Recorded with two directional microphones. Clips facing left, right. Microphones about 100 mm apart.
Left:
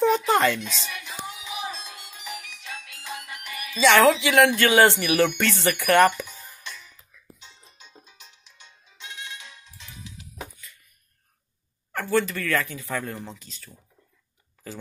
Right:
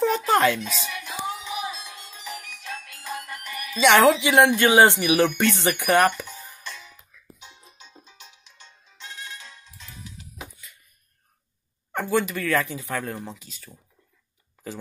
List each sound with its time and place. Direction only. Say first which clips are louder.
0.0 s music: even; centre (ahead or behind)
1.6 s music: right 1 dB; 30° left (ahead or behind)
2.0 s music: right 1 dB; 15° left (ahead or behind)
2.5 s music: right 3 dB; centre (ahead or behind)
3.8 s speech: right 1 dB; 25° right (ahead or behind)
5.9 s speech: left 3 dB; centre (ahead or behind)
6.3 s music: right 2 dB; 15° right (ahead or behind)
7.7 s music: right 1 dB; centre (ahead or behind)
9.4 s music: right 1 dB; 15° left (ahead or behind)
11.9 s speech: even; 15° right (ahead or behind)
13.1 s speech: right 2 dB; 10° right (ahead or behind)